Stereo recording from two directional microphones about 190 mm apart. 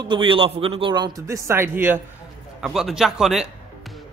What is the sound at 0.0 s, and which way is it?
A man's voice, 25° right (ahead or behind).